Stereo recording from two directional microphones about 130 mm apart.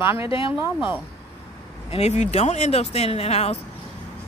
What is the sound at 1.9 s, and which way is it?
A woman's voice, 55° left (ahead or behind).